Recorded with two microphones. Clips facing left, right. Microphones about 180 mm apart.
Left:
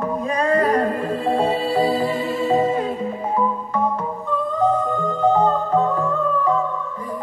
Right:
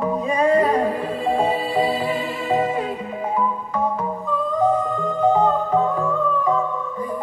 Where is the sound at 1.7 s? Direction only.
15° right (ahead or behind).